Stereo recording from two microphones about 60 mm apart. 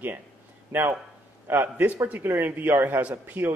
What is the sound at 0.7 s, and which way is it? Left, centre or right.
A man's voice, right.